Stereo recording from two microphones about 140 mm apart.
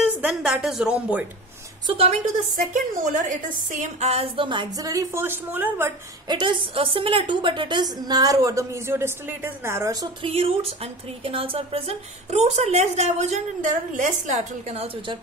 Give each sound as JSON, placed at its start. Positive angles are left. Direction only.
{"t": 0.0, "sound": "a woman's voice", "side_deg": -5}
{"t": 1.9, "sound": "a woman's voice", "side_deg": -45}
{"t": 2.5, "sound": "a woman's voice", "side_deg": -65}
{"t": 6.2, "sound": "a woman's voice", "side_deg": -35}
{"t": 10.2, "sound": "a woman's voice", "side_deg": -45}